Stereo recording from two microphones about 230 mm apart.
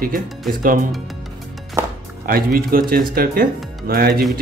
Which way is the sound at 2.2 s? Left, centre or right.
Right.